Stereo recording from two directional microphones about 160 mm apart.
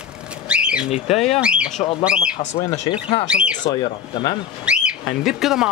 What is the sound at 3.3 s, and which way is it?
Speech, 5° right (ahead or behind).